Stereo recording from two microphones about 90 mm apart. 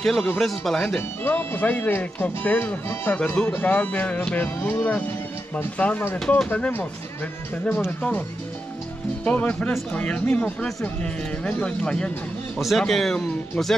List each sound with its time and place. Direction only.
0.0 s speech: 5° left (ahead or behind)
1.2 s speech: 20° left (ahead or behind)
6.1 s speech: 5° left (ahead or behind)
6.5 s speech: 20° left (ahead or behind)
9.2 s speech: 15° left (ahead or behind)
12.5 s speech: centre (ahead or behind)